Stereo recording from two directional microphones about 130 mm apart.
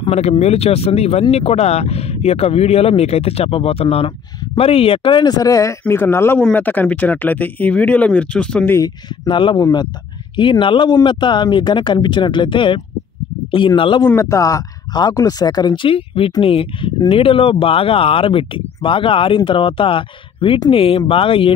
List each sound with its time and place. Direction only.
0.1 s speech: 55° left (ahead or behind); by 8.7 s 10° left (ahead or behind)
8.7 s speech: 25° left (ahead or behind)
9.3 s speech: 40° left (ahead or behind)
14.0 s speech: 20° left (ahead or behind); by 21.5 s 45° left (ahead or behind)